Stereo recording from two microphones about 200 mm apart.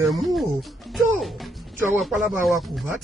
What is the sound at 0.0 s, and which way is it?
Music, centre (ahead or behind).